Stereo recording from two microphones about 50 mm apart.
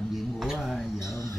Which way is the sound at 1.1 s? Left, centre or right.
Left.